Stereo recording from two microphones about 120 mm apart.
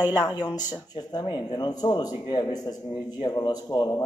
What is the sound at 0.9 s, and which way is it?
A man's voice, 35° left (ahead or behind).